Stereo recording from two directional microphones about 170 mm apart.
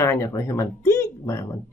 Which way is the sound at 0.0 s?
20° left (ahead or behind).